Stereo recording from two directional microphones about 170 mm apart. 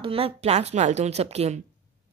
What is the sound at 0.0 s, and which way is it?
Speech, 35° right (ahead or behind).